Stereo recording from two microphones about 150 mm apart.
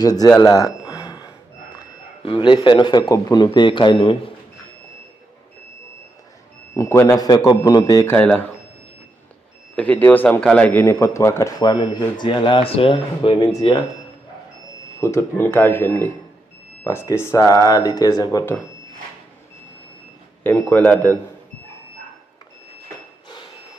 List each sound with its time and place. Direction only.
0.0 s a man's voice: 25° left (ahead or behind)
0.8 s a sound: 20° left (ahead or behind)
2.2 s a man's voice: 30° left (ahead or behind)
6.7 s a man's voice: 20° left (ahead or behind)
8.1 s speech: 10° left (ahead or behind)
9.8 s a man's voice: 10° left (ahead or behind); by 13.7 s 25° left (ahead or behind)
15.0 s a man's voice: 20° left (ahead or behind)
20.4 s speech: 10° left (ahead or behind)